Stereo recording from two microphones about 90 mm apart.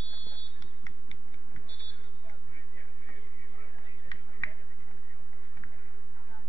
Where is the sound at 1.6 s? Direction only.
55° right (ahead or behind).